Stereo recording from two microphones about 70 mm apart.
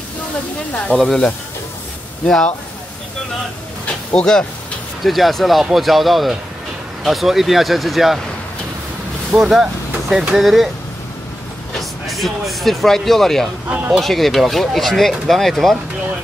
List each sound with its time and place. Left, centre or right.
0.9 s speech: centre
2.2 s speech: centre
3.8 s a sound: centre
5.0 s speech: centre
9.3 s speech: centre
11.7 s speech: centre
13.7 s speech: right
13.9 s speech: centre